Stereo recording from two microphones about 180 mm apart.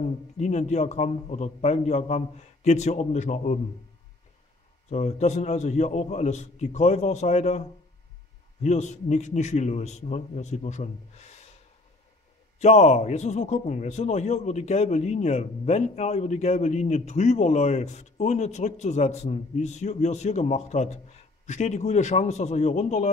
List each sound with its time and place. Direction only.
0.0 s a man's voice: 40° left (ahead or behind)
4.8 s a man's voice: 35° left (ahead or behind)
8.6 s a man's voice: 40° left (ahead or behind)
12.5 s a man's voice: 35° left (ahead or behind)